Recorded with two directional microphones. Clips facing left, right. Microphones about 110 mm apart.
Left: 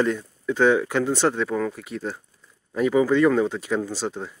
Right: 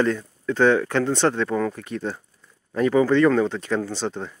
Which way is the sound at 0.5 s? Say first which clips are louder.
Right 1 dB; 10° left (ahead or behind).